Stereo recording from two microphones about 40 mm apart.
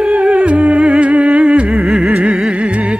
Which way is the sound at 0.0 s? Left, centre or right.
Right.